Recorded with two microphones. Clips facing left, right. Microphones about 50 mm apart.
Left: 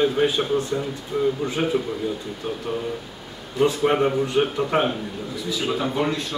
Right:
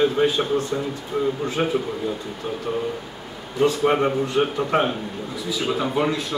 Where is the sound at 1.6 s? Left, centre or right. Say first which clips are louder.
Right 1 dB; right.